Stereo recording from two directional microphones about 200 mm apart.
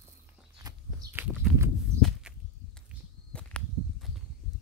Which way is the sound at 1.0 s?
10° right (ahead or behind).